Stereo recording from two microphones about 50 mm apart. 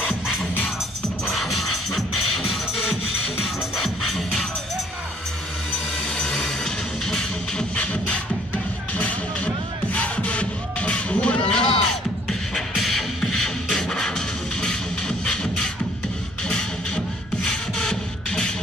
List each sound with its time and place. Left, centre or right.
1.2 s music: centre
6.1 s music: centre
7.7 s music: left